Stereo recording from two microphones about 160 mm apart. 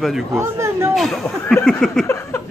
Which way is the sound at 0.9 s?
Centre (ahead or behind).